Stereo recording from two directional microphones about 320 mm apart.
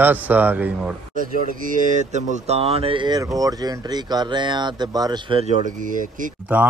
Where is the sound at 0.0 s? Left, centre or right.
Centre.